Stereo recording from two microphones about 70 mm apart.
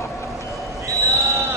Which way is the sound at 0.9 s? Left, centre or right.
Right.